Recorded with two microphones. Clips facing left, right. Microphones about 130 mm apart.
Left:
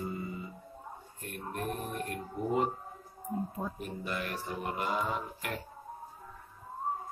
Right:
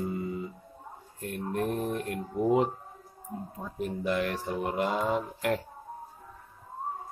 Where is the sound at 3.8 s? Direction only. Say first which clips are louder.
Right 8 dB; 80° right.